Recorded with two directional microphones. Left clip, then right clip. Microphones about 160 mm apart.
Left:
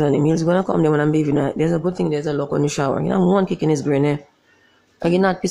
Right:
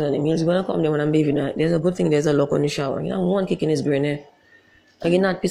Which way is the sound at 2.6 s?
10° left (ahead or behind).